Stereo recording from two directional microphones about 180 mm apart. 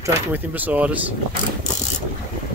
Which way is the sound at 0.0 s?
10° right (ahead or behind).